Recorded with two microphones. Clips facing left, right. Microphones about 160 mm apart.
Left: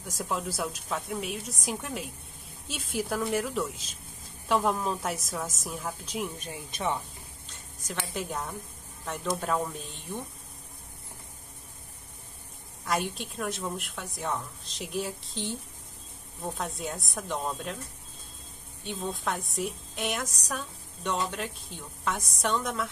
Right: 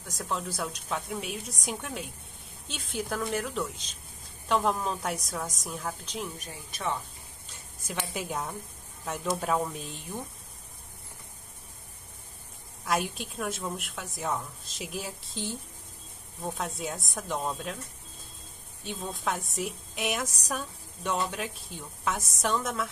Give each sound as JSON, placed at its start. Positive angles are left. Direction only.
{"t": 0.0, "sound": "a woman's voice", "side_deg": 5}
{"t": 6.4, "sound": "speech", "side_deg": 20}
{"t": 7.9, "sound": "a woman's voice", "side_deg": -10}
{"t": 12.8, "sound": "a woman's voice", "side_deg": 0}
{"t": 18.9, "sound": "a woman's voice", "side_deg": 0}